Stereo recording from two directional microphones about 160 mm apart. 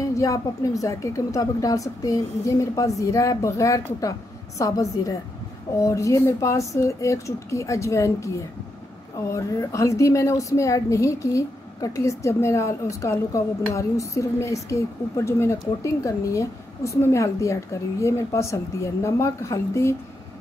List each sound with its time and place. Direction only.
0.0 s a woman's voice: 20° left (ahead or behind)